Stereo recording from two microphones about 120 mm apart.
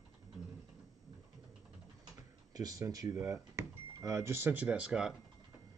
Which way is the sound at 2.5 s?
30° right (ahead or behind).